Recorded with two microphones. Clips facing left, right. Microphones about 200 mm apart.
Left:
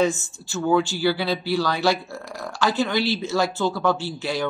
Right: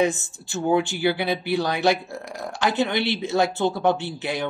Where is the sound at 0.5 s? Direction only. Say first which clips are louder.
Left 1 dB; 20° right (ahead or behind).